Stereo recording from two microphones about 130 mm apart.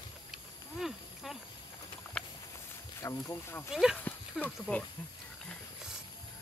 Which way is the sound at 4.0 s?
15° left (ahead or behind).